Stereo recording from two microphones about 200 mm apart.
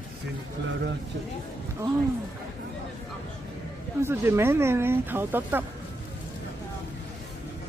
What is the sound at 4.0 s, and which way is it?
Speech, 15° right (ahead or behind).